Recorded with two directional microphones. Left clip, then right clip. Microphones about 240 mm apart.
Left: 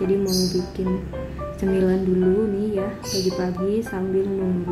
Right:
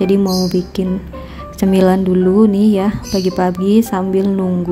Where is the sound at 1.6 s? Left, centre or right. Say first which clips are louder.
Right 9 dB; right.